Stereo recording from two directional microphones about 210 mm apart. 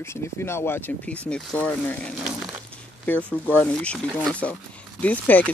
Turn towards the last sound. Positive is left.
turn(degrees=5)  # may be behind; listen again after turning